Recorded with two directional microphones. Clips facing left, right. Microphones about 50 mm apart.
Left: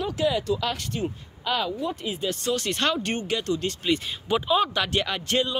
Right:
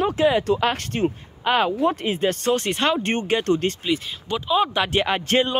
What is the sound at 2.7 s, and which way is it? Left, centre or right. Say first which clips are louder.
Speech: right 4 dB; right.